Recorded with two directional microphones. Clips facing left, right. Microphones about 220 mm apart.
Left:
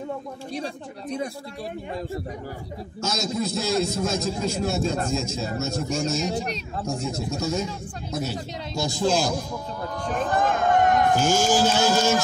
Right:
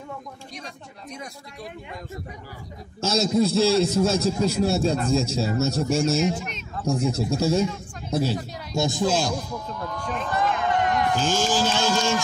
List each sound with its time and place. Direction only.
3.0 s a man's voice: 30° right (ahead or behind)
5.9 s speech: 35° left (ahead or behind)
7.3 s a man's voice: 30° right (ahead or behind)
9.0 s speech: centre (ahead or behind)
9.8 s a sound: 40° left (ahead or behind)
11.2 s speech: 10° left (ahead or behind)